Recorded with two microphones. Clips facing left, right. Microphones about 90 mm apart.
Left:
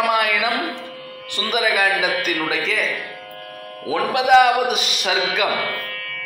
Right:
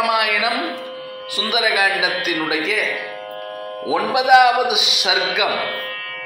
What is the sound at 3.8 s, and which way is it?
A man's voice, 15° right (ahead or behind).